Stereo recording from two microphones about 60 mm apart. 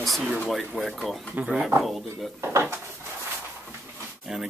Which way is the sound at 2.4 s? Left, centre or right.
Right.